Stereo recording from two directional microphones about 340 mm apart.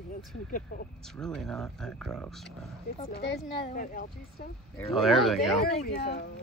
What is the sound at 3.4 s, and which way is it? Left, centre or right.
Speech, centre.